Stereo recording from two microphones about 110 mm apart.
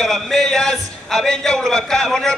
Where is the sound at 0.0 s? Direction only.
5° left (ahead or behind).